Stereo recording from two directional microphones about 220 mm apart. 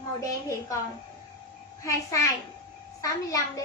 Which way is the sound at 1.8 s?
15° left (ahead or behind).